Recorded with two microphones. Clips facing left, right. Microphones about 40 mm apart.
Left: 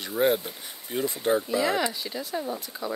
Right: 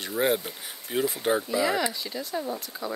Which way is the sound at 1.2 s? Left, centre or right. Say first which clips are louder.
Left 4 dB; centre.